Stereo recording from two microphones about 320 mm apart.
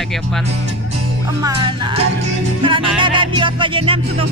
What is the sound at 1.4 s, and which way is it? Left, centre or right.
Music, centre.